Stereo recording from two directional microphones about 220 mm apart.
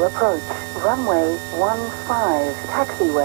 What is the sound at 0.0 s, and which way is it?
Speech, 20° right (ahead or behind).